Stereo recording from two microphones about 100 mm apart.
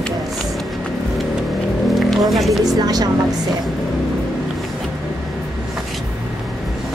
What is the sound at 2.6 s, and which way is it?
Speech, 40° right (ahead or behind).